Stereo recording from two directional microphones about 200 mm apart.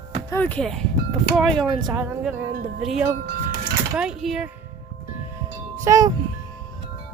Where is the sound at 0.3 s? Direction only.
10° left (ahead or behind).